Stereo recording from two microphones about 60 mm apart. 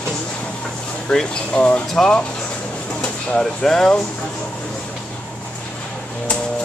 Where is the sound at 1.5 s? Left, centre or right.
Left.